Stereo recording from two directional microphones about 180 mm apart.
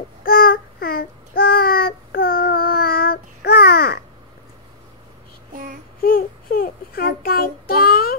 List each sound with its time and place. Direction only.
0.2 s child singing: 50° left (ahead or behind)
6.0 s child singing: 55° left (ahead or behind)